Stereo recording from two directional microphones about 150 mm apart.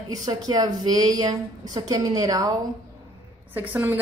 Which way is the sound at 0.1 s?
25° right (ahead or behind).